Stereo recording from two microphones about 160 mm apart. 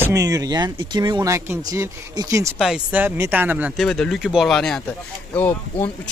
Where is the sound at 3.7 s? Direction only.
5° left (ahead or behind).